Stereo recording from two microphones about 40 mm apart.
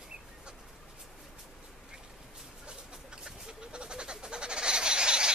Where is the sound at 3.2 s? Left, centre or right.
Right.